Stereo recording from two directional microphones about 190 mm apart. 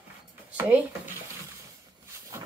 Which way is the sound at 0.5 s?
10° right (ahead or behind).